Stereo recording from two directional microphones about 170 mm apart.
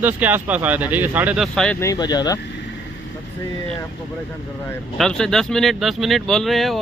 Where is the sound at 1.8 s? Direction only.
20° left (ahead or behind).